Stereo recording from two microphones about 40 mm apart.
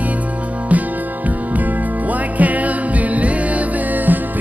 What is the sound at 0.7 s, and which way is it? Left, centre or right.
Music, right.